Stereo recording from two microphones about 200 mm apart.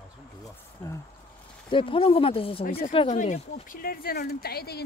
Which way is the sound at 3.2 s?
35° left (ahead or behind).